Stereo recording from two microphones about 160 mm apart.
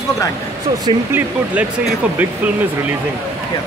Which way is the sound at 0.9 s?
30° right (ahead or behind).